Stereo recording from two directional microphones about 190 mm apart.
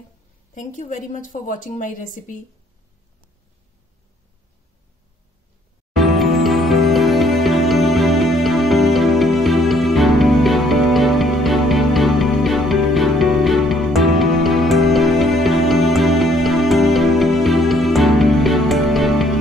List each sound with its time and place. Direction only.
0.6 s a woman's voice: 40° left (ahead or behind)
5.9 s music: centre (ahead or behind)